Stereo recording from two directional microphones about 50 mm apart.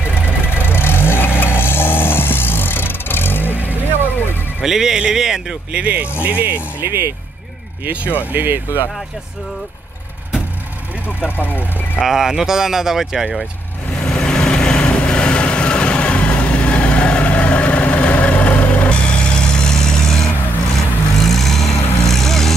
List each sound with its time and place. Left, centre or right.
0.6 s vehicle: left
4.6 s speech: centre
5.7 s speech: right
6.9 s speech: right
8.3 s speech: right
11.1 s speech: left
12.0 s speech: centre
14.0 s vehicle: centre